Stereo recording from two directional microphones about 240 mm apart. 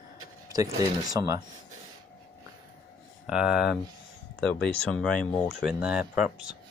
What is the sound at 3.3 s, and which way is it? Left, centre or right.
Speech, centre.